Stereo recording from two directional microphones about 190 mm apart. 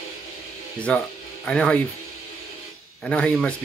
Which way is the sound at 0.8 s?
5° left (ahead or behind).